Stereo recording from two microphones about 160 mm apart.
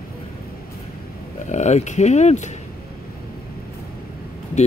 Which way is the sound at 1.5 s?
45° left (ahead or behind).